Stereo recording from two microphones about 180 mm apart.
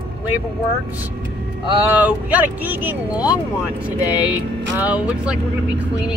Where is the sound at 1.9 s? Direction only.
10° right (ahead or behind).